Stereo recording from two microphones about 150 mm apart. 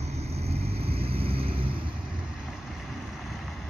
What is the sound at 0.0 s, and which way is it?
Vehicle, 45° right (ahead or behind).